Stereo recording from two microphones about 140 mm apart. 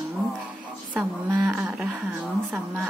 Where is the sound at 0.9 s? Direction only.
20° right (ahead or behind).